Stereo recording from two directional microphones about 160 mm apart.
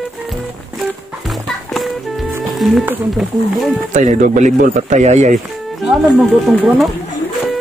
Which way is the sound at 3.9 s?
50° right (ahead or behind).